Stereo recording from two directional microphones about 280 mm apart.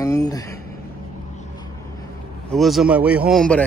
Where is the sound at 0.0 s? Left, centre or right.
Centre.